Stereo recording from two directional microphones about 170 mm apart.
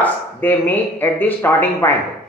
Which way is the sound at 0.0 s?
10° left (ahead or behind).